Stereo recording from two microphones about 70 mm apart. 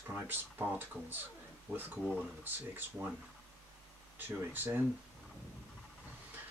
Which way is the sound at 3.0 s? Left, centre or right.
Right.